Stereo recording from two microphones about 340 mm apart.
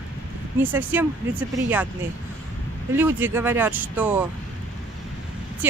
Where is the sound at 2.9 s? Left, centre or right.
Centre.